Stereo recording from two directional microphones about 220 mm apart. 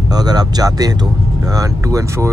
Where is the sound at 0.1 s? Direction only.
15° right (ahead or behind).